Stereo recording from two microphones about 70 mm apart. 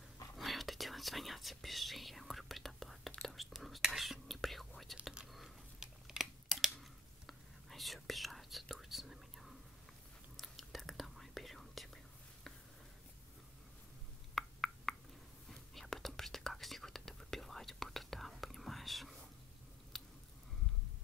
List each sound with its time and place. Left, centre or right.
0.4 s whispering: centre
5.3 s a sound: centre
10.3 s whispering: centre
14.3 s a sound: centre
15.5 s whispering: centre
19.9 s biting: centre